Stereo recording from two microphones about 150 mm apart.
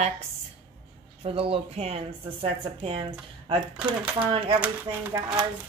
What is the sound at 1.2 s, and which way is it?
Speech, 40° right (ahead or behind).